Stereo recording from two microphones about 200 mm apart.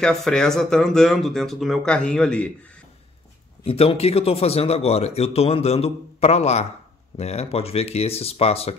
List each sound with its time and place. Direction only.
0.0 s speech: 5° left (ahead or behind)
3.6 s a man's voice: 30° left (ahead or behind)